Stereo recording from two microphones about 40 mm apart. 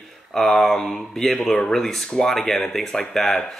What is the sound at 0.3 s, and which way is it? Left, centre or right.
Speech, centre.